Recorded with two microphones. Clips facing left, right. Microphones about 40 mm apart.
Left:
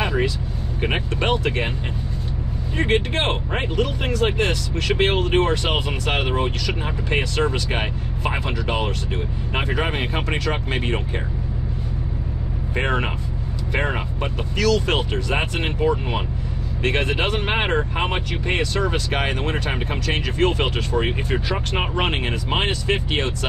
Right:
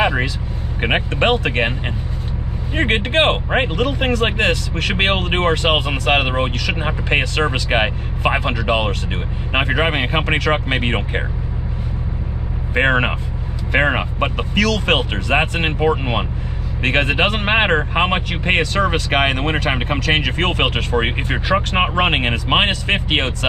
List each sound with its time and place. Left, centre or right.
0.7 s speech: right
2.8 s speech: right
12.7 s speech: right